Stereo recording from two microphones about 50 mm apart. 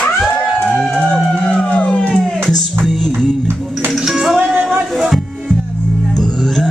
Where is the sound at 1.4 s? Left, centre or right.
Left.